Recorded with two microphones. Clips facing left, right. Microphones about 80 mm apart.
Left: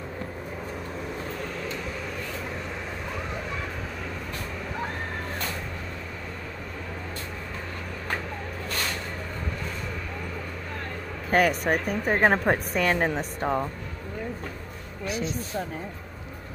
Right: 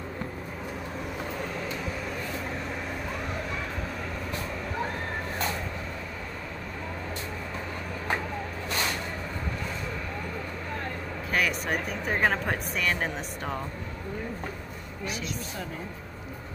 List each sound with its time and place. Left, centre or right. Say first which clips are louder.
11.2 s a woman's voice: left 6 dB; left